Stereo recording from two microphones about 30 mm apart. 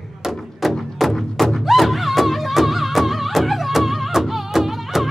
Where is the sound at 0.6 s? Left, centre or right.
Centre.